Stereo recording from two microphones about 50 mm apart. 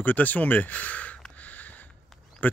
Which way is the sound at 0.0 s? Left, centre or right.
Left.